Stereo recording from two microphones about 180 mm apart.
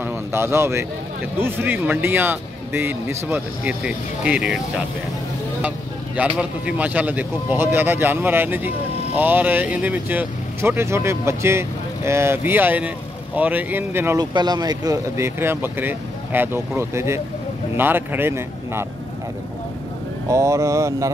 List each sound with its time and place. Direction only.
0.0 s speech: 15° right (ahead or behind)
6.1 s speech: 10° right (ahead or behind)
14.3 s speech: 25° right (ahead or behind)
20.2 s speech: 15° right (ahead or behind)